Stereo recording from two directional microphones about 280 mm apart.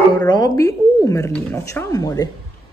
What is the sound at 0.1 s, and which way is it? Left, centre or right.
Speech, centre.